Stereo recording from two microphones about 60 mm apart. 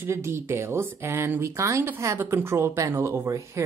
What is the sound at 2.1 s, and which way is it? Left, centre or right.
Speech, right.